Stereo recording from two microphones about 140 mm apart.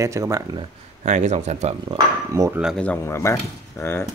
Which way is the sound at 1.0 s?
55° right (ahead or behind).